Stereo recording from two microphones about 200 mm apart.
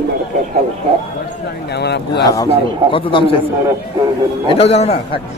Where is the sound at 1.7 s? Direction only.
55° left (ahead or behind).